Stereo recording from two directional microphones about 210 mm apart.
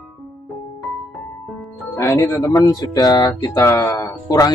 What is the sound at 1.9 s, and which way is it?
Speech, 15° left (ahead or behind).